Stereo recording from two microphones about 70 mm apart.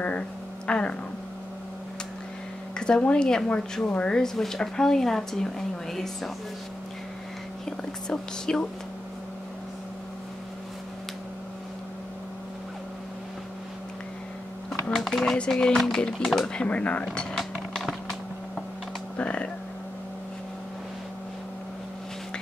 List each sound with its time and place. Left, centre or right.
0.7 s speech: centre
2.8 s speech: centre
8.1 s speech: centre
14.7 s typewriter: centre
15.5 s speech: centre
16.5 s speech: centre
17.4 s a sound: centre
19.1 s music: centre